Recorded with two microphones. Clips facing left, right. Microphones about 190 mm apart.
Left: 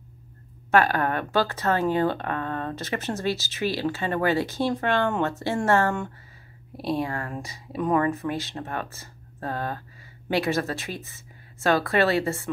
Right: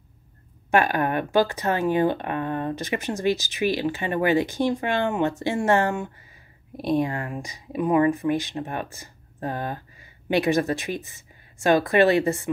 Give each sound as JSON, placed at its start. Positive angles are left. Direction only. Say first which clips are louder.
{"t": 0.7, "sound": "speech", "louder": "even", "side_deg": -15}